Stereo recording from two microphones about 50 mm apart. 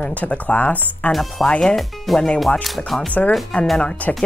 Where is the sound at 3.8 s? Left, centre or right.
Left.